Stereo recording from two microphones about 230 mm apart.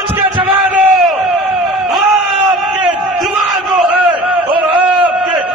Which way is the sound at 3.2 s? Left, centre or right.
Centre.